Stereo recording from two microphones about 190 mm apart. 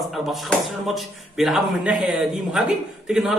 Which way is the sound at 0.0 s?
Centre (ahead or behind).